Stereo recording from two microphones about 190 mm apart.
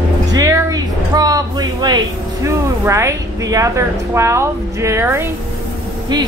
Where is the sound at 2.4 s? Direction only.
15° right (ahead or behind).